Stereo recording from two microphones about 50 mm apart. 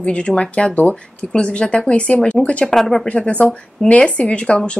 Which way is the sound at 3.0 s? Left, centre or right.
Left.